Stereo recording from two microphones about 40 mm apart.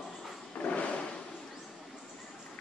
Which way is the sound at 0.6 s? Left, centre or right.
Left.